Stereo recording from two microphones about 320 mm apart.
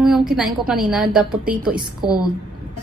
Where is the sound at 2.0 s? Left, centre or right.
Centre.